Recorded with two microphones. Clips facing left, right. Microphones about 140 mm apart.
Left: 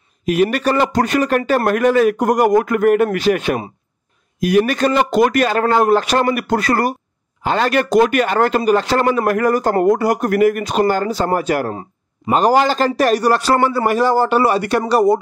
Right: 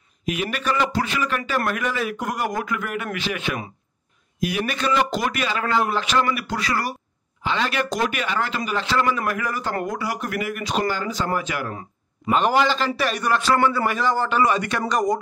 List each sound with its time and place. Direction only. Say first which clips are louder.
0.2 s a man's voice: left 11 dB; 40° left (ahead or behind)